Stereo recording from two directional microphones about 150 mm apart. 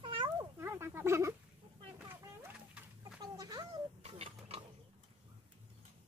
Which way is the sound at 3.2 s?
25° right (ahead or behind).